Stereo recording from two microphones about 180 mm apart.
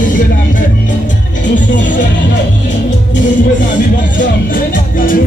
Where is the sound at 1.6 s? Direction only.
45° left (ahead or behind).